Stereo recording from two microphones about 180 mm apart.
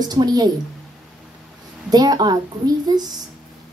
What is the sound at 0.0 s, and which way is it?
Speech, 20° right (ahead or behind).